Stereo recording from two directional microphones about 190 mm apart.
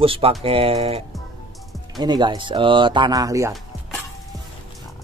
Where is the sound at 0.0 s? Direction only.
30° right (ahead or behind).